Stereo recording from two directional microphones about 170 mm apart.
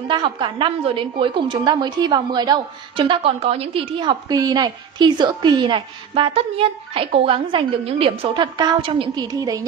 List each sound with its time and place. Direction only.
0.1 s a woman's voice: 30° right (ahead or behind)